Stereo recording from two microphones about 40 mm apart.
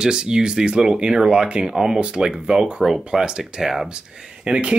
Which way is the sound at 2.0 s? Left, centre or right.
Right.